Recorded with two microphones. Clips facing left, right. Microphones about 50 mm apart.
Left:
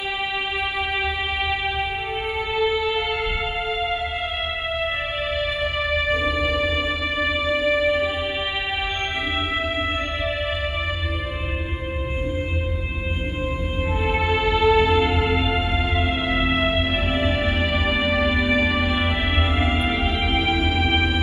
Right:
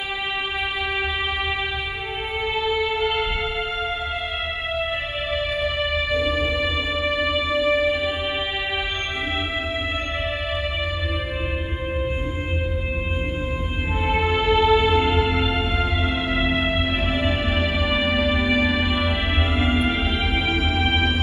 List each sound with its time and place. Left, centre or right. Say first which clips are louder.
5.6 s music: even; left
14.0 s music: right 1 dB; right
14.6 s music: left 1 dB; left
20.1 s music: left 1 dB; right